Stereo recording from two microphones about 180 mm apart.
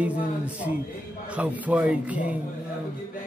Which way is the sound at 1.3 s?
10° right (ahead or behind).